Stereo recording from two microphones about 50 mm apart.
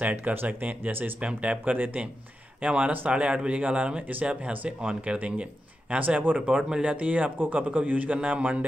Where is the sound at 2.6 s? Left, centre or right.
Right.